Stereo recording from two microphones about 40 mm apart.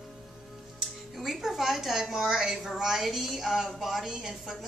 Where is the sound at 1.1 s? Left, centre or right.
Centre.